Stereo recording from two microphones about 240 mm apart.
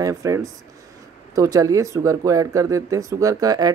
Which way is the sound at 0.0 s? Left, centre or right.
Centre.